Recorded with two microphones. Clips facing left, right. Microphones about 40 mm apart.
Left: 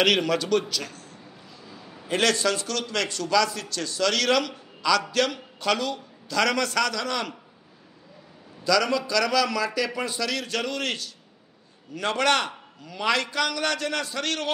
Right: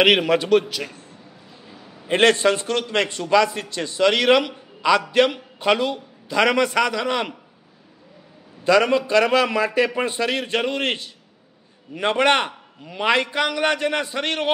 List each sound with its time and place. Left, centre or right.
0.0 s a man's voice: right
1.8 s a sound: centre
2.0 s a man's voice: right
8.6 s a man's voice: right